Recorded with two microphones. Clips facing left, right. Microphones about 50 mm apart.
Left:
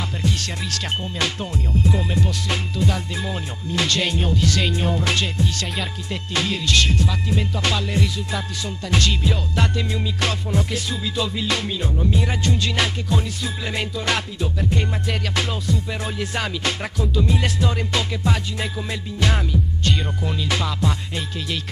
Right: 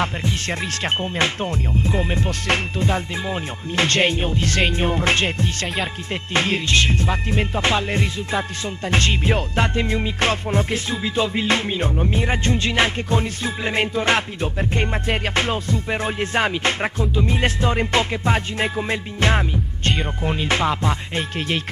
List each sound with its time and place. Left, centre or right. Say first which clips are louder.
0.2 s music: right 1 dB; right
3.8 s music: right 4 dB; right